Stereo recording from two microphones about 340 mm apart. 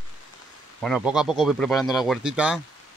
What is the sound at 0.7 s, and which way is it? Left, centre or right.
A man's voice, centre.